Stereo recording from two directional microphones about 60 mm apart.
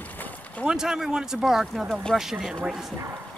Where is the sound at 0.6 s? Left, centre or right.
Centre.